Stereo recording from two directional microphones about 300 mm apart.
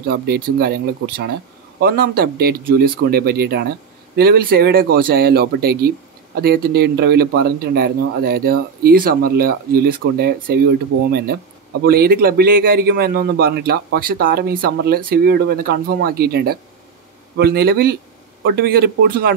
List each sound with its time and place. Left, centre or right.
0.1 s a man's voice: right